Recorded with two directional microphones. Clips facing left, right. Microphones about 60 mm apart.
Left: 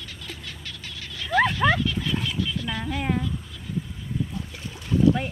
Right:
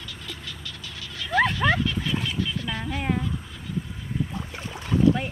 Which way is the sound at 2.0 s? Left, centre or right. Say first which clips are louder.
Even; centre.